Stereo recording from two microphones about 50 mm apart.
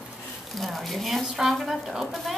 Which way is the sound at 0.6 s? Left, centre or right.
Centre.